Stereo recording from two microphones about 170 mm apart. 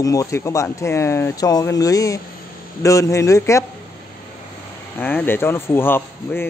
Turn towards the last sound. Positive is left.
turn(degrees=15)  # may be behind; listen again after turning